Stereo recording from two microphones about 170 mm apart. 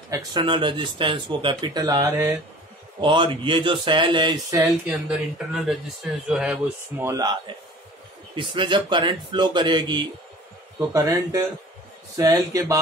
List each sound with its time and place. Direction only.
0.1 s speech: 25° right (ahead or behind)
3.0 s speech: 30° right (ahead or behind)
4.8 s speech: 5° right (ahead or behind)
7.1 s speech: 25° right (ahead or behind)